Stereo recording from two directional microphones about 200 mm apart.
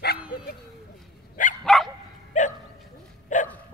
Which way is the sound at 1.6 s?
Centre (ahead or behind).